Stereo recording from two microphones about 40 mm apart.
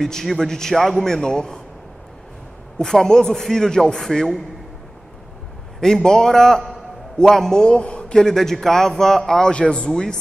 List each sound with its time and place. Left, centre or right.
0.0 s a man's voice: centre
1.0 s a man's voice: centre
2.8 s a man's voice: centre
5.8 s a man's voice: centre
8.2 s a man's voice: centre
9.5 s a man's voice: left